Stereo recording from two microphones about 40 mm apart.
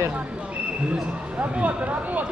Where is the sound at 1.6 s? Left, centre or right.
Right.